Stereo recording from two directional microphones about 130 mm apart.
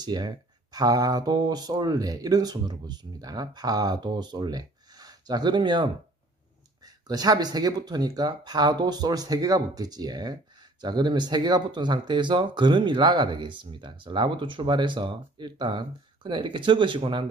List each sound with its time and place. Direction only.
0.0 s speech: 35° right (ahead or behind)
7.1 s speech: 30° right (ahead or behind)